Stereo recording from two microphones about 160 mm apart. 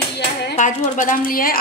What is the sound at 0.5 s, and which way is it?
A woman's voice, 50° left (ahead or behind).